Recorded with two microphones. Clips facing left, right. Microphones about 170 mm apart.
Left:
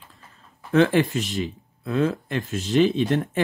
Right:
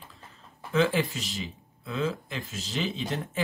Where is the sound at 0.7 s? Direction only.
55° left (ahead or behind).